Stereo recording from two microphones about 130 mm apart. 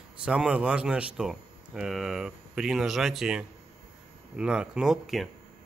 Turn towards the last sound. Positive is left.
turn(degrees=0)  # may be behind; listen again after turning